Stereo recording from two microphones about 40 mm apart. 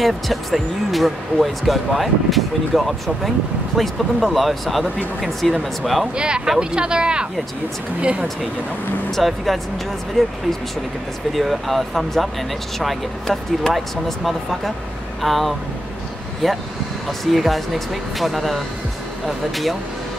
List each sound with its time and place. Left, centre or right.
0.0 s speech: centre
6.1 s speech: right
9.1 s speech: centre
11.3 s speech: centre